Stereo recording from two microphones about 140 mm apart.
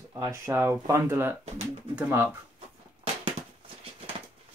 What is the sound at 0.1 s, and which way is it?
Speech, 20° right (ahead or behind).